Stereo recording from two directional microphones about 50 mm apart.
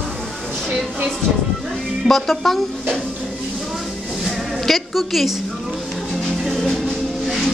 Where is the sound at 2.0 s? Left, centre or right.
Centre.